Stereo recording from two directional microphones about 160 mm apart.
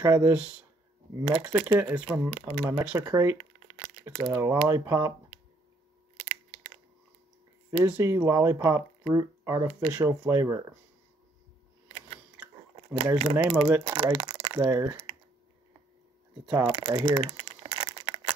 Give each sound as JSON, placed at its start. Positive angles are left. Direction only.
{"t": 0.0, "sound": "speech", "side_deg": -25}
{"t": 0.3, "sound": "speech", "side_deg": -5}
{"t": 6.1, "sound": "a sound", "side_deg": -40}
{"t": 7.8, "sound": "speech", "side_deg": -20}
{"t": 12.9, "sound": "speech", "side_deg": -35}
{"t": 13.7, "sound": "speech", "side_deg": -15}
{"t": 16.6, "sound": "crumpling", "side_deg": -30}